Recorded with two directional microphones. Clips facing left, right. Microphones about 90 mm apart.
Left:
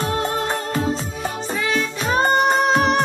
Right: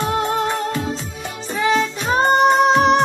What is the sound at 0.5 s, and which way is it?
Music, 40° left (ahead or behind).